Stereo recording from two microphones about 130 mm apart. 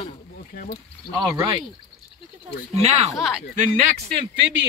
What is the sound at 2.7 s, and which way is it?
Speech, 55° right (ahead or behind).